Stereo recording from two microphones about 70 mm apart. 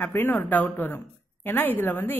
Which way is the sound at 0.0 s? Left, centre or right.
Left.